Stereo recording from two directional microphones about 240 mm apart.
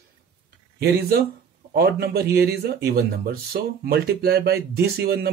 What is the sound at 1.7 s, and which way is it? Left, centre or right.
Speech, right.